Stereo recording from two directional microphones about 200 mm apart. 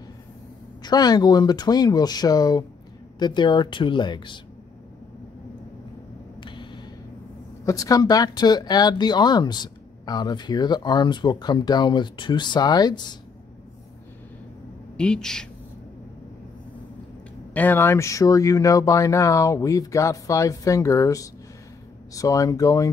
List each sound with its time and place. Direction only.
0.8 s speech: 20° left (ahead or behind)
6.4 s vehicle: 25° left (ahead or behind)
7.6 s speech: 15° left (ahead or behind)
15.0 s speech: 5° left (ahead or behind)
17.6 s speech: 10° left (ahead or behind)